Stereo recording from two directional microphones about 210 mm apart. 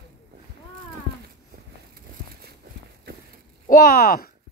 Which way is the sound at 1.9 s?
50° right (ahead or behind).